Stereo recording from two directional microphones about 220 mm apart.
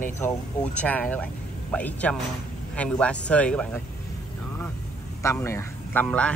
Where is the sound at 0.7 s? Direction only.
5° left (ahead or behind).